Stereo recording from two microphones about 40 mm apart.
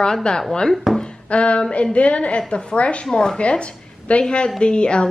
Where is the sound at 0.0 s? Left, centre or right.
Left.